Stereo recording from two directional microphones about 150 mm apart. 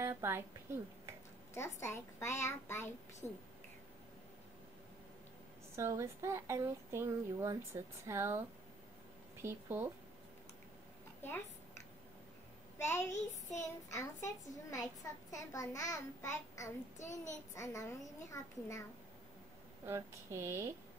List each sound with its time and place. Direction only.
0.0 s speech: 15° right (ahead or behind)
1.5 s a child's voice: 20° left (ahead or behind)
5.8 s speech: 20° right (ahead or behind)
9.4 s speech: 15° right (ahead or behind)
12.7 s a child's voice: 15° left (ahead or behind)
13.1 s child singing: 55° left (ahead or behind)
13.9 s a child's voice: 20° left (ahead or behind)
19.8 s speech: 15° right (ahead or behind)